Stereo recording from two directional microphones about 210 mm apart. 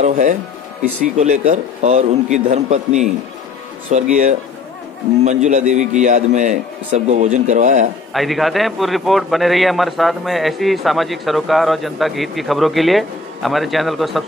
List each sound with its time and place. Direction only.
0.0 s a man's voice: 35° right (ahead or behind)
8.1 s a man's voice: centre (ahead or behind)